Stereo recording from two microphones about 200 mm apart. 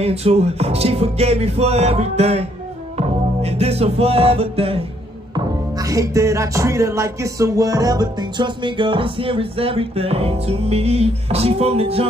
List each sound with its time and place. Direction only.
0.0 s music: 30° right (ahead or behind)
5.3 s music: 15° right (ahead or behind)